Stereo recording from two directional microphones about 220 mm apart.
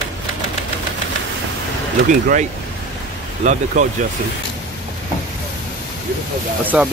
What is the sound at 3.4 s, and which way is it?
Speech, 35° right (ahead or behind).